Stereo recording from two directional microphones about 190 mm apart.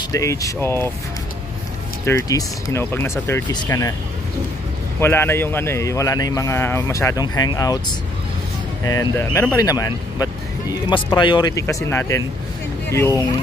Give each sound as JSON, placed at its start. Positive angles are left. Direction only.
{"t": 0.1, "sound": "speech", "side_deg": 15}
{"t": 2.0, "sound": "speech", "side_deg": 15}
{"t": 5.0, "sound": "speech", "side_deg": 10}
{"t": 8.8, "sound": "speech", "side_deg": 15}